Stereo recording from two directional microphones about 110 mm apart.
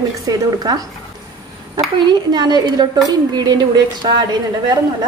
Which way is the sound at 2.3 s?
40° right (ahead or behind).